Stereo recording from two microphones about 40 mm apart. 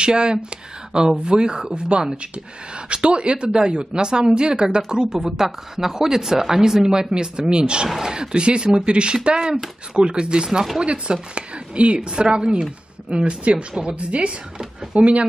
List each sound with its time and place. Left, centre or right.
0.0 s a woman's voice: right